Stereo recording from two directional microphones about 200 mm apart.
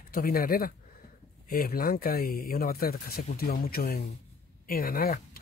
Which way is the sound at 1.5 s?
45° left (ahead or behind).